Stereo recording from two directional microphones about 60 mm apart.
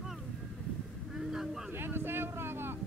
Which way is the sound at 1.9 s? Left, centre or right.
Right.